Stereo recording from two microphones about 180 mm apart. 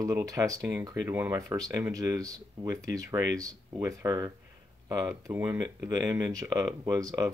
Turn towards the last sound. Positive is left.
turn(degrees=-20)  # may be behind; listen again after turning